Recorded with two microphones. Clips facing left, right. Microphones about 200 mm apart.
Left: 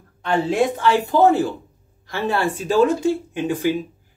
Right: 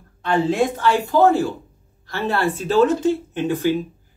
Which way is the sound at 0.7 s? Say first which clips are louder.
Even; 20° left (ahead or behind).